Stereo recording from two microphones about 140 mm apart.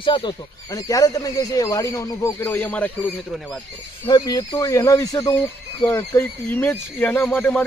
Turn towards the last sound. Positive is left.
turn(degrees=5)  # may be behind; listen again after turning